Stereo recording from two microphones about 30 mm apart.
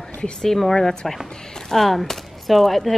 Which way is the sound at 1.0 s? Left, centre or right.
Centre.